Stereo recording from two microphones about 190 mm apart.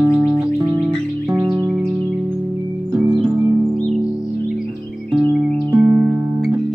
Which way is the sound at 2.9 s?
20° right (ahead or behind).